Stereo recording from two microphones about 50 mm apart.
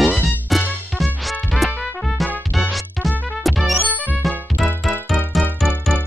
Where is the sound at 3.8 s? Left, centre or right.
Left.